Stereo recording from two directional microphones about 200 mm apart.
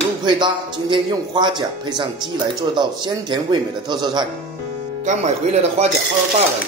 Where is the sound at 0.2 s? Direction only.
25° right (ahead or behind).